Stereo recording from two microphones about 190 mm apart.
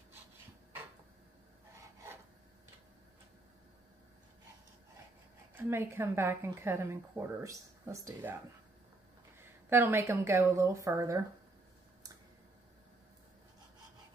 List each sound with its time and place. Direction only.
5.5 s a woman's voice: 10° right (ahead or behind)
9.4 s a woman's voice: 10° right (ahead or behind)